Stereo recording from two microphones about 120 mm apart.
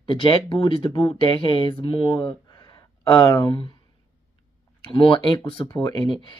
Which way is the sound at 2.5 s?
35° left (ahead or behind).